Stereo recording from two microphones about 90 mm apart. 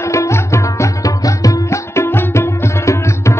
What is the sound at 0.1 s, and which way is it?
Music, 30° left (ahead or behind).